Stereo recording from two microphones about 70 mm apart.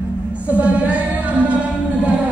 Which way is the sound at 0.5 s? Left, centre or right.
Centre.